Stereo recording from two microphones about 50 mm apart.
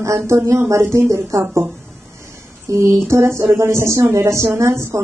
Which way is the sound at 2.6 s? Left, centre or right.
Right.